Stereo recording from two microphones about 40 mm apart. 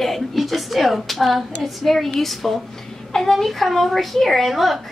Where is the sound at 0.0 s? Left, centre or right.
Centre.